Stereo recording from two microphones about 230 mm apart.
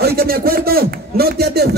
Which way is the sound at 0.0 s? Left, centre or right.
Right.